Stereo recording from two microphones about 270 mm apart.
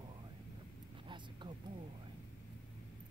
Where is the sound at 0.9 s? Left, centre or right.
Centre.